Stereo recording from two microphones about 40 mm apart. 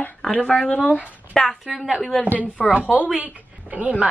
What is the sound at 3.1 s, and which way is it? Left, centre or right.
Speech, right.